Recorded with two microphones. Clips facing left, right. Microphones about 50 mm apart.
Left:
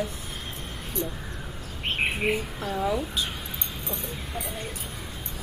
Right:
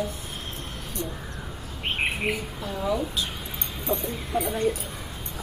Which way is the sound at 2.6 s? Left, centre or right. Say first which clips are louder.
Even; centre.